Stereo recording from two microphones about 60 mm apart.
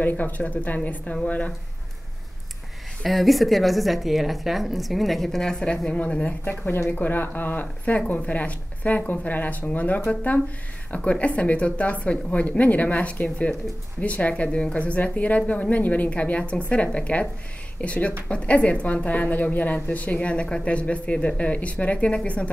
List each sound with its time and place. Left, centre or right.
0.0 s a woman's voice: left
3.0 s a woman's voice: centre; by 6.5 s left
6.5 s a woman's voice: left